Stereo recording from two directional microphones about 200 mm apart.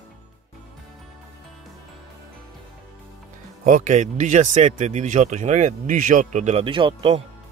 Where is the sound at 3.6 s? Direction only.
40° right (ahead or behind).